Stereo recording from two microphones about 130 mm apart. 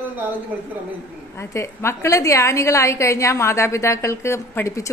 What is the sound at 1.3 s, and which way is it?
A woman's voice, 20° left (ahead or behind).